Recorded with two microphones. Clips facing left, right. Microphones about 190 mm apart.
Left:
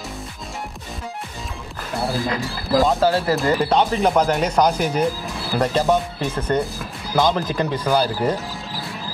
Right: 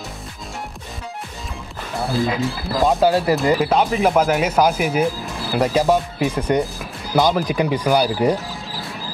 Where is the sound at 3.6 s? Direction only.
5° right (ahead or behind).